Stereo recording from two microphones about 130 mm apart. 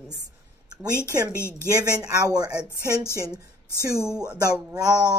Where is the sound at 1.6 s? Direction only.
30° right (ahead or behind).